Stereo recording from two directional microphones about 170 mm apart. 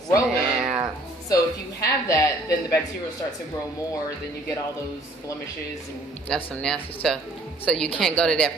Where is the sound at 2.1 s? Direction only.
20° left (ahead or behind).